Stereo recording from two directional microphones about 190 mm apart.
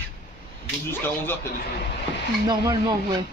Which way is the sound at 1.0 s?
10° left (ahead or behind).